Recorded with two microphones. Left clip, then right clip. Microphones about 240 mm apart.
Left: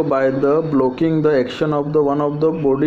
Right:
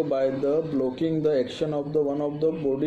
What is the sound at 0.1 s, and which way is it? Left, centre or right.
A man's voice, centre.